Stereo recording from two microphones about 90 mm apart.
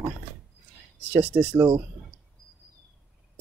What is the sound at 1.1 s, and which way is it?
Speech, 20° right (ahead or behind).